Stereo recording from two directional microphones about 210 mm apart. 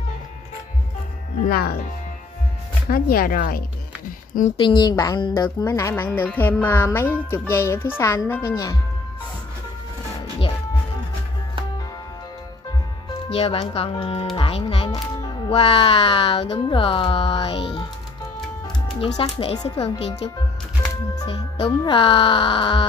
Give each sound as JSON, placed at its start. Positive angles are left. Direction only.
{"t": 1.5, "sound": "speech", "side_deg": 45}
{"t": 2.9, "sound": "speech", "side_deg": 45}
{"t": 4.6, "sound": "speech", "side_deg": 20}
{"t": 13.3, "sound": "speech", "side_deg": 30}
{"t": 18.9, "sound": "speech", "side_deg": 25}